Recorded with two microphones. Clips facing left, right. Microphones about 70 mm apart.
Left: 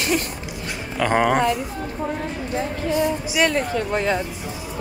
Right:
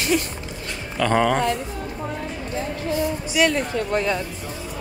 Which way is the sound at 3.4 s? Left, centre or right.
Left.